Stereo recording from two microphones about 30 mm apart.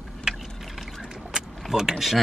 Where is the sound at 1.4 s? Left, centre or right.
Centre.